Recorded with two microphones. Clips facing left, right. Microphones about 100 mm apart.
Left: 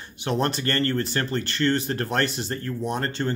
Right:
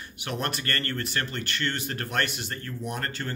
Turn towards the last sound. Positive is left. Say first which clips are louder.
# left 6 dB
turn(degrees=30)  # may be behind; listen again after turning